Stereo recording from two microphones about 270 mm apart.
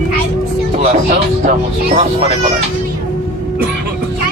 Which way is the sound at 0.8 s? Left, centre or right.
Right.